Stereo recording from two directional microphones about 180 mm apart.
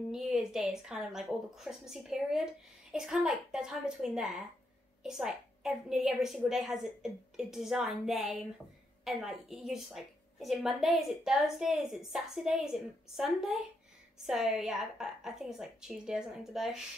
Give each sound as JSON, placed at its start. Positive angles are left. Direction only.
{"t": 0.1, "sound": "a woman's voice", "side_deg": -5}